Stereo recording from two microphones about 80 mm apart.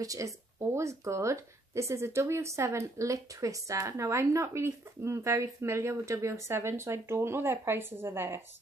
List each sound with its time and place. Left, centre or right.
0.0 s speech: right